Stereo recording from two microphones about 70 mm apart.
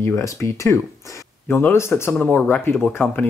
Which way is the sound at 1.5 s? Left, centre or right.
Left.